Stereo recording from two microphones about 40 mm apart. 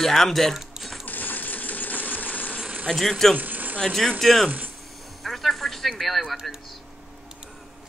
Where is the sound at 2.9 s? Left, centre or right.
Centre.